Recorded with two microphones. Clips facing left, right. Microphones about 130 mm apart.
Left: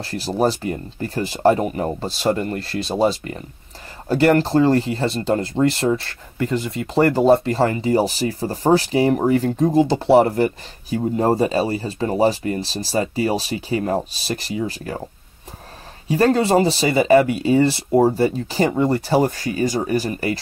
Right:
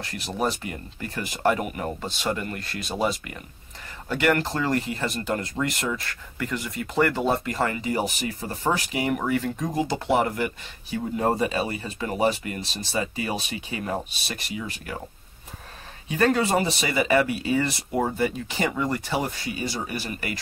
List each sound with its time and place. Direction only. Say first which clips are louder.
0.0 s speech: left 7 dB; 35° left (ahead or behind)
16.1 s speech: left 6 dB; 35° left (ahead or behind)